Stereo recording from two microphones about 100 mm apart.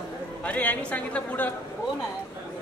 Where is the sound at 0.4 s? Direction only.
15° left (ahead or behind).